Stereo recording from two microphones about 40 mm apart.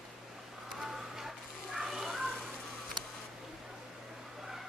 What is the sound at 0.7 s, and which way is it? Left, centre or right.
Children playing, centre.